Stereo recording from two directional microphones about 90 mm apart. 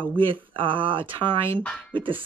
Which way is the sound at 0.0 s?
70° right (ahead or behind).